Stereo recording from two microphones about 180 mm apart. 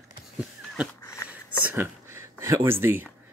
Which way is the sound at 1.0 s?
15° left (ahead or behind).